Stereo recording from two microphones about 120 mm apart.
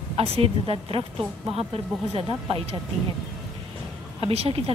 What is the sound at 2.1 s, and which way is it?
Speech, 55° right (ahead or behind).